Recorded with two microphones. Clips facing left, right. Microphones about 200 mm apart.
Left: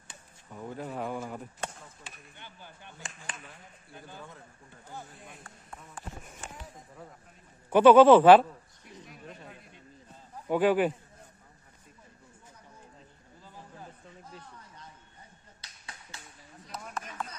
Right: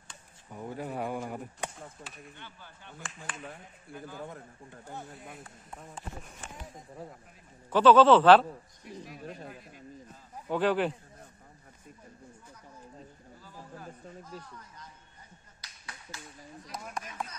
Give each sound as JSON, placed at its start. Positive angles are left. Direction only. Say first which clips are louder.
{"t": 0.5, "sound": "speech", "louder": "right 1 dB", "side_deg": -10}
{"t": 2.0, "sound": "speech", "louder": "right 3 dB", "side_deg": -35}
{"t": 2.3, "sound": "speech", "louder": "even", "side_deg": 15}
{"t": 5.0, "sound": "speech", "louder": "right 4 dB", "side_deg": -50}
{"t": 7.7, "sound": "speech", "louder": "left 3 dB", "side_deg": 15}
{"t": 10.5, "sound": "speech", "louder": "left 3 dB", "side_deg": 10}
{"t": 15.6, "sound": "finger snapping", "louder": "right 1 dB", "side_deg": 25}
{"t": 16.7, "sound": "speech", "louder": "even", "side_deg": -15}